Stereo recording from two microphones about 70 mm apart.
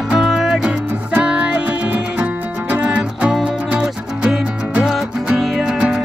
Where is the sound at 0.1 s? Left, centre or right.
Centre.